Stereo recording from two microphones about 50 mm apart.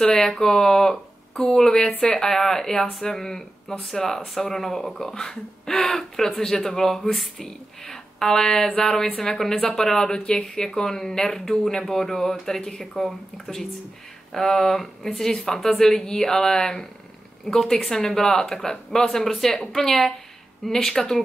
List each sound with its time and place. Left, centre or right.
0.0 s speech: centre